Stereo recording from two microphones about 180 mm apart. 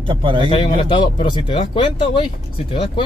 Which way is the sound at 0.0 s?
30° right (ahead or behind).